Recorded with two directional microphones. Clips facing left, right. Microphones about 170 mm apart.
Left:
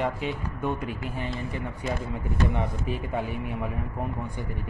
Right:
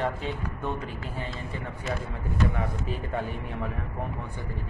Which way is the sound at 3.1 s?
15° left (ahead or behind).